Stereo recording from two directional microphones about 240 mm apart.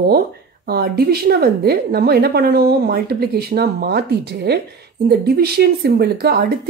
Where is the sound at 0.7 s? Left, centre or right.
Right.